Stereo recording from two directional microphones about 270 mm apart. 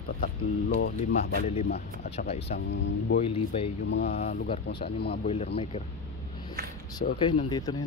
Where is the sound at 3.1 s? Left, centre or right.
Left.